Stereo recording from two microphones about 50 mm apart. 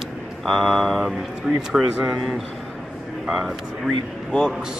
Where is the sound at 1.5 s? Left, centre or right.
Centre.